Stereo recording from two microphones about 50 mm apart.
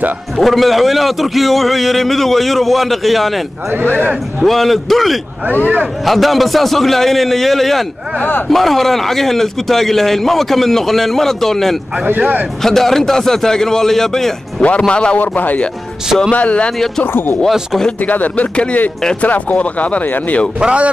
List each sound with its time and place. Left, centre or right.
0.4 s a man's voice: centre
4.4 s a man's voice: centre
12.2 s speech: right
12.6 s a man's voice: centre
15.1 s speech: left
17.0 s speech: left
18.0 s speech: left
20.6 s speech: right